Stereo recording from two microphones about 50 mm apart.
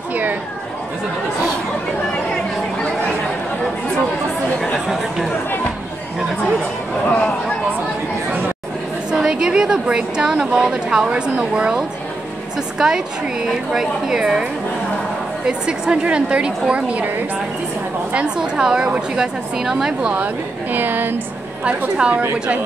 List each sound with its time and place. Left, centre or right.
0.1 s a sound: right
4.7 s chatter: centre
9.1 s a woman's voice: centre
18.1 s a woman's voice: centre
20.7 s a woman's voice: right
21.6 s a woman's voice: right